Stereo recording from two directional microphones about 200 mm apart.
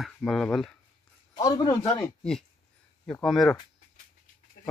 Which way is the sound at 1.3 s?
20° left (ahead or behind).